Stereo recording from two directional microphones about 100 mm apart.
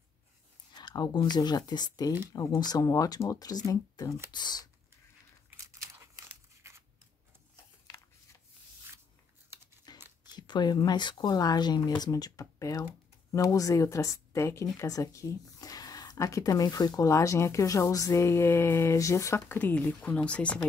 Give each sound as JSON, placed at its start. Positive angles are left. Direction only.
{"t": 0.7, "sound": "speech", "side_deg": 45}
{"t": 5.9, "sound": "crumpling", "side_deg": -25}
{"t": 9.9, "sound": "tearing", "side_deg": 45}
{"t": 10.2, "sound": "speech", "side_deg": 45}